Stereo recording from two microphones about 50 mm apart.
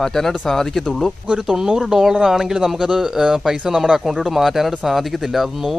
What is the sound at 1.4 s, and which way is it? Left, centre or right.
A man's voice, centre.